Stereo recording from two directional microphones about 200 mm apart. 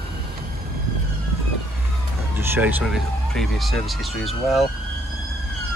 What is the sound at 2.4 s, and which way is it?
Speech, 10° right (ahead or behind).